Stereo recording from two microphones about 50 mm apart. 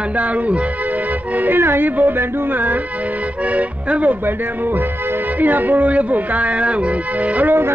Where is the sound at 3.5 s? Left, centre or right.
Right.